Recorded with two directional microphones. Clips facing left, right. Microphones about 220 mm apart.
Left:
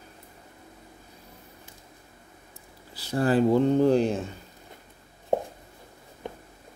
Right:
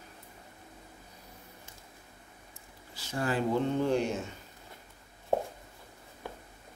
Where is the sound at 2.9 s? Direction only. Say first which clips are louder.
Left 8 dB; 35° left (ahead or behind).